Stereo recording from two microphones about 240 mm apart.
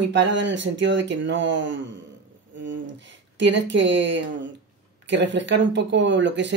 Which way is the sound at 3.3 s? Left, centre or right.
Right.